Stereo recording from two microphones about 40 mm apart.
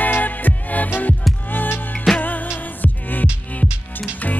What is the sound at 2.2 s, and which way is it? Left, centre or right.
Music, left.